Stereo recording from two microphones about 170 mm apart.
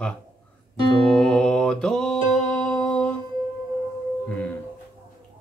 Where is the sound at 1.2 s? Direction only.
5° left (ahead or behind).